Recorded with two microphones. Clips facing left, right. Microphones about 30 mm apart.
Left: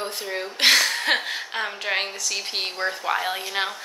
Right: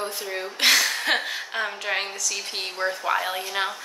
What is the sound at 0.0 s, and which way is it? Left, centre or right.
Speech, left.